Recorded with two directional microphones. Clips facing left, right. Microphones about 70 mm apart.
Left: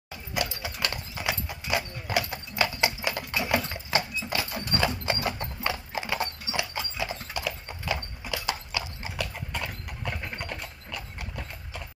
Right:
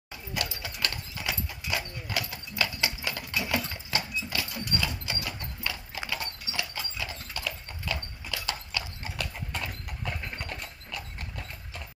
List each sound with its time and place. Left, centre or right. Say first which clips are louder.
0.3 s clip-clop: left 4 dB; centre
3.6 s horse: left 4 dB; left
4.6 s clip-clop: left 5 dB; left; by 11.1 s centre